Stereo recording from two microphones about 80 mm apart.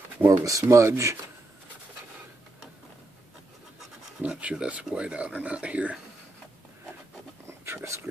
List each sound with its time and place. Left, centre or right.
0.4 s speech: right
4.3 s speech: centre
7.4 s a sound: right